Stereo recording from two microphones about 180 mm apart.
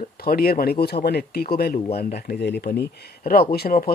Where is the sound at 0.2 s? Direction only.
55° left (ahead or behind).